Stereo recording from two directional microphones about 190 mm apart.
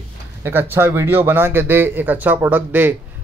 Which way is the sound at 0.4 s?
10° right (ahead or behind).